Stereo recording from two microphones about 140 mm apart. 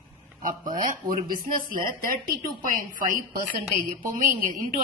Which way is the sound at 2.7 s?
75° right (ahead or behind).